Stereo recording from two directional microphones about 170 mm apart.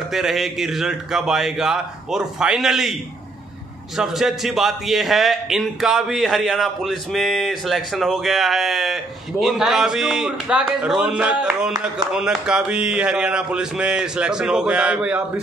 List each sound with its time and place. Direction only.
0.1 s a man's voice: centre (ahead or behind)